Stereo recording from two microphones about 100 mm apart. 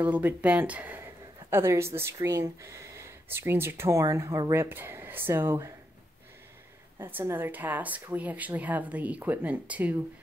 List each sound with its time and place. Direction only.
0.0 s speech: 15° right (ahead or behind)
7.0 s a woman's voice: 20° right (ahead or behind)